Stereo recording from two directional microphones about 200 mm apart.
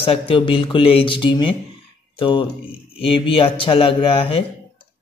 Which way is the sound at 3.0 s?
25° left (ahead or behind).